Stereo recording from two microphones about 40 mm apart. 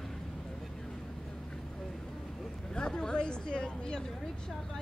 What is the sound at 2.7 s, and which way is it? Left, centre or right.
Speech, left.